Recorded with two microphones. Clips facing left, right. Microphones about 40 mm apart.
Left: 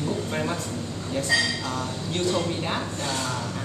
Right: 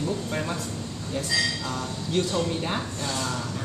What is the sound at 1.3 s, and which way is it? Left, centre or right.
Speech, left.